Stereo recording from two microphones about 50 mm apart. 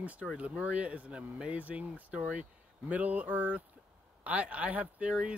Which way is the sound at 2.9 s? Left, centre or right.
Right.